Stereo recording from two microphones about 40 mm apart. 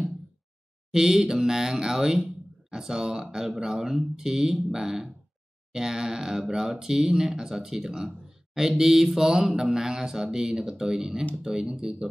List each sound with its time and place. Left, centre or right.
0.9 s speech: centre